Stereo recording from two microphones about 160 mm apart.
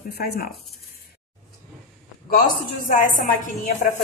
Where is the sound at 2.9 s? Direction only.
60° left (ahead or behind).